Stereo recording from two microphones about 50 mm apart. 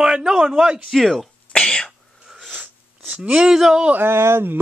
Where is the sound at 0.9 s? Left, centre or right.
Centre.